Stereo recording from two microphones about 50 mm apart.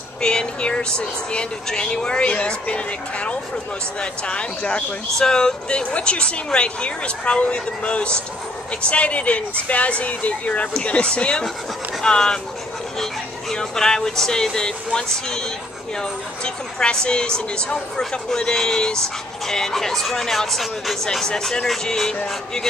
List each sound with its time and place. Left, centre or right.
0.2 s speech: centre